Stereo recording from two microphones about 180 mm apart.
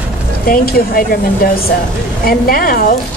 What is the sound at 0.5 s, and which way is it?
A woman's voice, 55° left (ahead or behind).